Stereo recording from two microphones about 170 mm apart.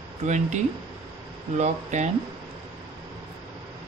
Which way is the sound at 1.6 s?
45° right (ahead or behind).